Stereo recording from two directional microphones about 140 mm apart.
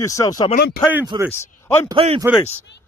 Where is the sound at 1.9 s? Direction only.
40° right (ahead or behind).